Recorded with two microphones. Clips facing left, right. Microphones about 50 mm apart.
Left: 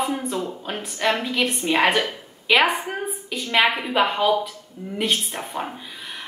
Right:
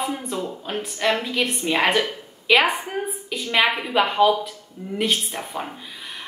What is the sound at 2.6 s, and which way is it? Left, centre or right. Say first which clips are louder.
Speech: left 1 dB; left.